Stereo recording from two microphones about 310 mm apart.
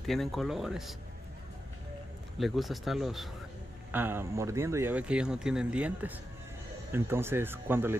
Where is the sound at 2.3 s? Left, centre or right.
Centre.